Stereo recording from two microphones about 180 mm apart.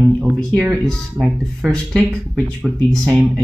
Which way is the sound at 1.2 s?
15° right (ahead or behind).